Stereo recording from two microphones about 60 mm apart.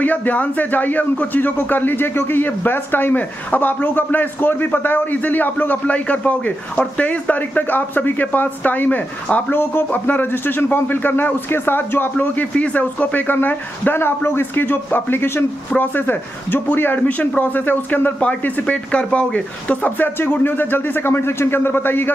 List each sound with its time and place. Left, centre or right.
0.0 s a man's voice: left
18.4 s a man's voice: left